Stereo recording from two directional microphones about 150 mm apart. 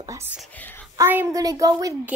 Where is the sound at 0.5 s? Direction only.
10° left (ahead or behind).